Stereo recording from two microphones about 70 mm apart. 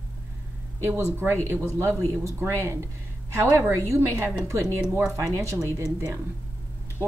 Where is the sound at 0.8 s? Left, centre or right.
Right.